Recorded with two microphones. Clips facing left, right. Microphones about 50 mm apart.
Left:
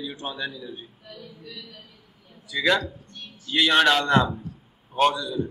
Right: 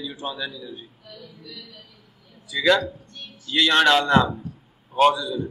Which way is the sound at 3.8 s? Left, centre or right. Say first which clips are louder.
Right 2 dB; centre.